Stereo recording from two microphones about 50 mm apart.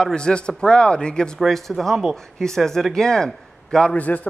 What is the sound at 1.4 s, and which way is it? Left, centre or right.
A man's voice, centre.